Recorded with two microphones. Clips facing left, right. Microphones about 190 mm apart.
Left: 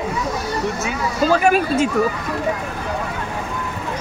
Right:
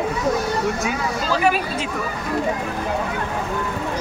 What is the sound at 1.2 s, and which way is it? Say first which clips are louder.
Speech: left 6 dB; 50° left (ahead or behind).